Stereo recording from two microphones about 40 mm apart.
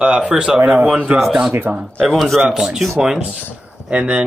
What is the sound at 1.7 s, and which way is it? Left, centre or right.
Speech, right.